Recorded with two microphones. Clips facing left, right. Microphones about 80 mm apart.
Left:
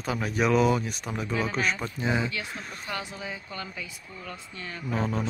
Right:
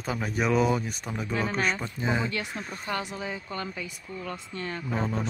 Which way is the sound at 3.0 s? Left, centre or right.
Right.